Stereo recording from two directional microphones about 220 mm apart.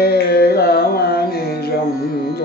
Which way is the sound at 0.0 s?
45° left (ahead or behind).